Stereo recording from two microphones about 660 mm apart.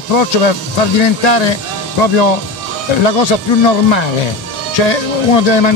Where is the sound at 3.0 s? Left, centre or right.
Left.